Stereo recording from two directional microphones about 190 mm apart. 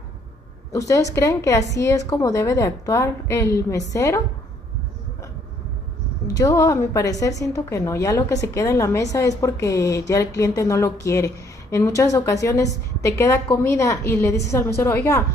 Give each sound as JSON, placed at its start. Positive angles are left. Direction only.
{"t": 0.7, "sound": "a woman's voice", "side_deg": 15}
{"t": 6.2, "sound": "a woman's voice", "side_deg": 20}